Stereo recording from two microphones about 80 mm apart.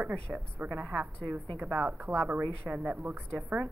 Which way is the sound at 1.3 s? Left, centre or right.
Right.